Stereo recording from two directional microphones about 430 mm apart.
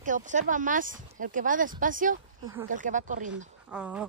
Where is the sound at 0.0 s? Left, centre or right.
Centre.